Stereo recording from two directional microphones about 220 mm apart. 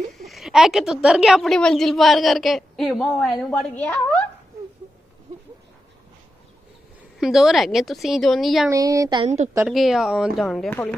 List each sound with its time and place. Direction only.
0.1 s a woman's voice: centre (ahead or behind)
7.2 s a woman's voice: centre (ahead or behind)
8.6 s speech: 15° right (ahead or behind)
9.7 s a woman's voice: centre (ahead or behind)